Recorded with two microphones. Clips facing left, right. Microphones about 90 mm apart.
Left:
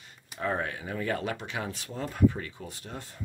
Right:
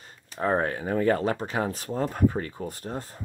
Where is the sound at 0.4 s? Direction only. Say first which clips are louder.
Right 6 dB; 35° right (ahead or behind).